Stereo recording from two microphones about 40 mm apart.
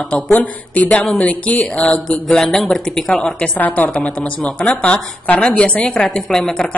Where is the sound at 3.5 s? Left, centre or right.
Left.